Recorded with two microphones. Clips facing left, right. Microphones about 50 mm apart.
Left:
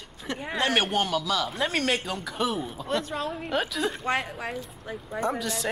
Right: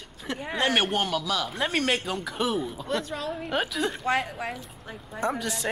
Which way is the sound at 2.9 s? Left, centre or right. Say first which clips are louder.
Left 2 dB; left.